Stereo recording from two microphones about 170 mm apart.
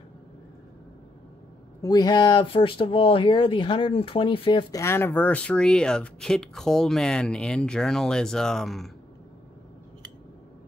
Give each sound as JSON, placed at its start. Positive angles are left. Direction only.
{"t": 1.8, "sound": "speech", "side_deg": 20}
{"t": 4.8, "sound": "speech", "side_deg": 15}